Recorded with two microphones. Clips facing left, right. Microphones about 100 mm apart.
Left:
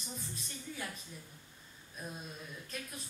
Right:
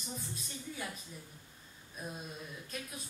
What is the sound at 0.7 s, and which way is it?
Speech, 5° right (ahead or behind).